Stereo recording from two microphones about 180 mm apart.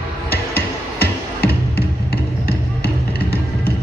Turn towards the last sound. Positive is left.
turn(degrees=60)  # may be behind; listen again after turning